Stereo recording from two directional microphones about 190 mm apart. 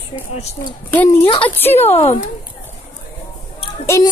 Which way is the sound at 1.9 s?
35° left (ahead or behind).